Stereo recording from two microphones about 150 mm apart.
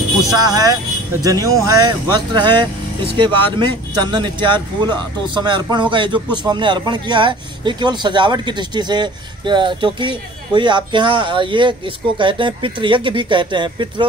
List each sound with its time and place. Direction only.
0.2 s speech: 25° right (ahead or behind)